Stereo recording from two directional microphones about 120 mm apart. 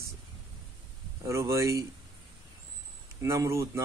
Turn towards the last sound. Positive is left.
turn(degrees=-25)  # may be behind; listen again after turning